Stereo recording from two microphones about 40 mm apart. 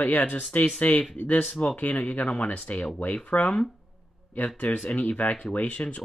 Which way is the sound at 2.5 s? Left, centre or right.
Left.